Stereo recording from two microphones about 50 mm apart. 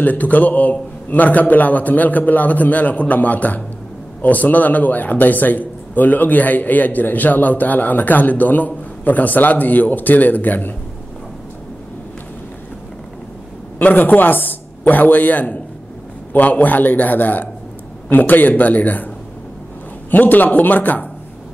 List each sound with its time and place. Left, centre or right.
0.0 s a man's voice: left
13.7 s a man's voice: left
20.1 s a man's voice: left